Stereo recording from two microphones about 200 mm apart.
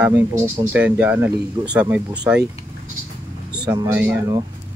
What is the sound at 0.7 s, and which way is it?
Speech, 5° right (ahead or behind).